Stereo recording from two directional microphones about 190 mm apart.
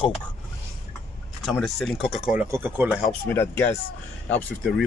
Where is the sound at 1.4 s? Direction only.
Centre (ahead or behind).